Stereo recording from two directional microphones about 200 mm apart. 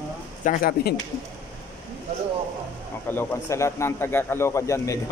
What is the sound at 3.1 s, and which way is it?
Speech, 10° left (ahead or behind).